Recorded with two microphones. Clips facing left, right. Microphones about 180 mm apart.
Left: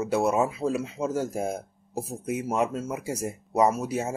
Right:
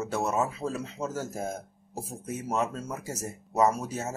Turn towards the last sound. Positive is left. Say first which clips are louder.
# left 3 dB
turn(degrees=10)  # may be behind; listen again after turning